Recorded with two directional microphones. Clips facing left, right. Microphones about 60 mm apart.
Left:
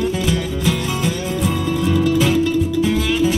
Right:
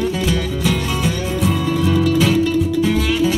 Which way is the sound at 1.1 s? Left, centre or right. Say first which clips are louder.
Right 1 dB; right.